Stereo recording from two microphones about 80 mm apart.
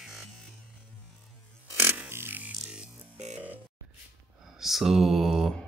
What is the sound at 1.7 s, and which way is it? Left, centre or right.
Music, right.